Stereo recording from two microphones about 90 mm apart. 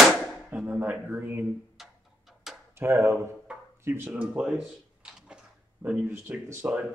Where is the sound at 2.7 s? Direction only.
25° right (ahead or behind).